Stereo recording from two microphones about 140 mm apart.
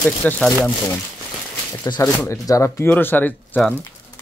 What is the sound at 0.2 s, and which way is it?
Speech, 10° left (ahead or behind).